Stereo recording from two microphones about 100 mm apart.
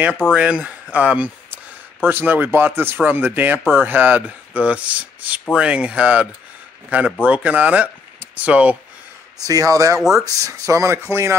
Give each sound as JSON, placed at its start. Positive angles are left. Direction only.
{"t": 0.3, "sound": "speech", "side_deg": -10}
{"t": 9.5, "sound": "speech", "side_deg": -35}